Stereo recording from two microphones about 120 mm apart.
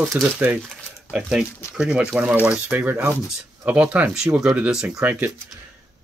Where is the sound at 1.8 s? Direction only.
10° right (ahead or behind).